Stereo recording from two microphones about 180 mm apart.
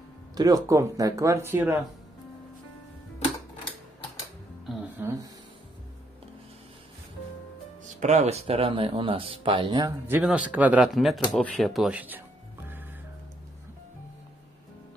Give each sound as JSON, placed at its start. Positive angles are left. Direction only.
{"t": 0.3, "sound": "speech", "side_deg": -20}
{"t": 4.7, "sound": "music", "side_deg": 0}
{"t": 8.0, "sound": "speech", "side_deg": -40}